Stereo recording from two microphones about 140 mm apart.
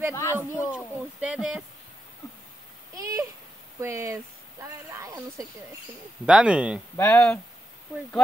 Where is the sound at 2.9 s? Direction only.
25° right (ahead or behind).